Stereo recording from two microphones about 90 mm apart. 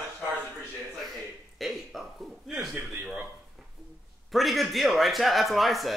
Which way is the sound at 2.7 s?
15° right (ahead or behind).